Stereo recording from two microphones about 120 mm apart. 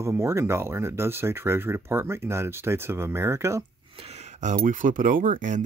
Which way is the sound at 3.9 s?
55° right (ahead or behind).